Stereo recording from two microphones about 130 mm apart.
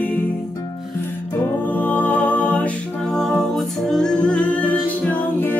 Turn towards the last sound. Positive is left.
turn(degrees=10)  # may be behind; listen again after turning